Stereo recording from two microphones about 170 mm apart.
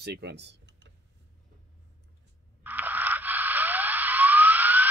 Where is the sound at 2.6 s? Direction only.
10° right (ahead or behind).